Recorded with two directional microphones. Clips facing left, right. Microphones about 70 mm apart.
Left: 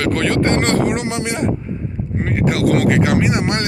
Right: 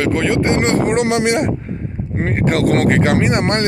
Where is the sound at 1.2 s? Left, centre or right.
Right.